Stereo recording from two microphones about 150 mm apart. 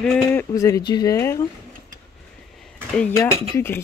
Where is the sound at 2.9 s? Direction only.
15° left (ahead or behind).